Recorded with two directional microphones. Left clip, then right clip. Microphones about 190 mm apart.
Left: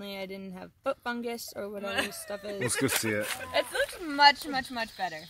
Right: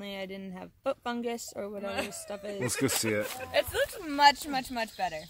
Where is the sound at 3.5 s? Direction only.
55° right (ahead or behind).